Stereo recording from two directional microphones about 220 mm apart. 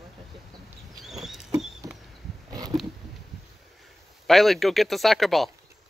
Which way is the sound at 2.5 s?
15° right (ahead or behind).